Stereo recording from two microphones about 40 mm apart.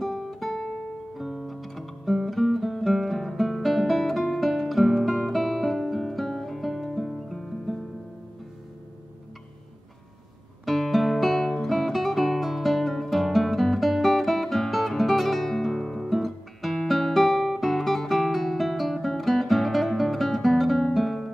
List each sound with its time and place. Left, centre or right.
0.0 s guitar: centre
1.1 s music: centre
10.6 s music: centre
11.6 s guitar: centre